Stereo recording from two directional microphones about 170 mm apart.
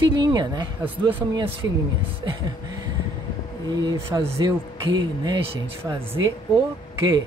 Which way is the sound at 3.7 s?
25° right (ahead or behind).